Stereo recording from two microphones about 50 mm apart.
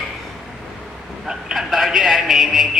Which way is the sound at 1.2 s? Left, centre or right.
Centre.